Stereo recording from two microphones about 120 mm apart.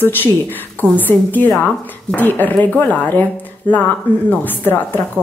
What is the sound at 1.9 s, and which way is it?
Speech, 15° left (ahead or behind).